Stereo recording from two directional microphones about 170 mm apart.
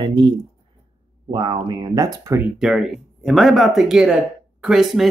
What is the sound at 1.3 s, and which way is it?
Speech, 25° right (ahead or behind).